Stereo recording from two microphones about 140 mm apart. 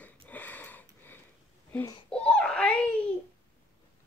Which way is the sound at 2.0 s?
5° left (ahead or behind).